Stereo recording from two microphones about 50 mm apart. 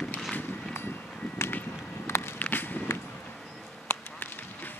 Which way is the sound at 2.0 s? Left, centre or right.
Left.